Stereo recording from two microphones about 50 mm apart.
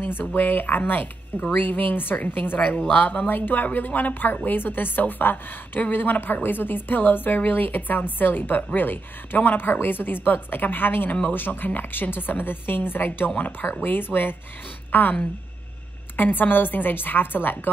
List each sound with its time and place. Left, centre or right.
0.0 s a woman's voice: left
16.2 s a woman's voice: left